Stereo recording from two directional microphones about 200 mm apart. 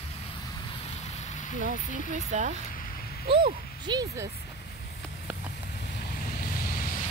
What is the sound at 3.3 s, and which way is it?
Speech, 25° right (ahead or behind).